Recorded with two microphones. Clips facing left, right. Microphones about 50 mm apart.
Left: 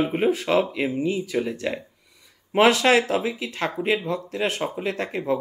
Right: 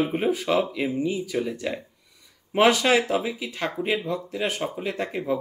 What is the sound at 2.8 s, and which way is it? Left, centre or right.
Speech, left.